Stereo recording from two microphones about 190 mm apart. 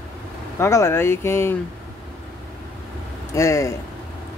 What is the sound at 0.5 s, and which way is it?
Speech, 15° left (ahead or behind).